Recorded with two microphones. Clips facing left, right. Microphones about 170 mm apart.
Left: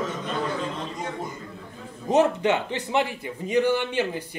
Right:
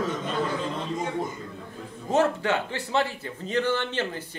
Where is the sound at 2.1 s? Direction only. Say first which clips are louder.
Left 3 dB; 20° left (ahead or behind).